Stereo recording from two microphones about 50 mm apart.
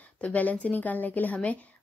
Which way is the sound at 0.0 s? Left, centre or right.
Left.